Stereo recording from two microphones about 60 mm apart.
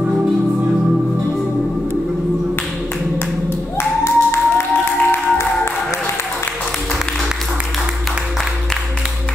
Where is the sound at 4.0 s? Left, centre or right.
Left.